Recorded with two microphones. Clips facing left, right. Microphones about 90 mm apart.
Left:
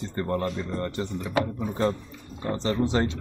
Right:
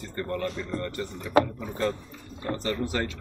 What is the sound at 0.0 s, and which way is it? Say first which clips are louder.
Speech: left 3 dB; 25° left (ahead or behind).